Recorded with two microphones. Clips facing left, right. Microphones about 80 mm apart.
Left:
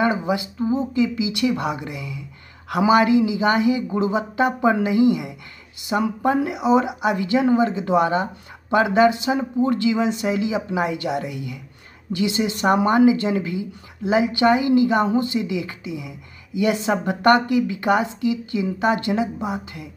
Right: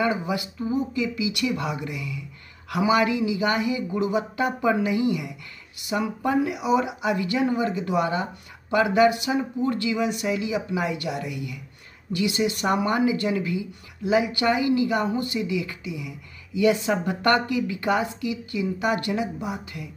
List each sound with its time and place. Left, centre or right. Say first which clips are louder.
0.0 s speech: left 4 dB; left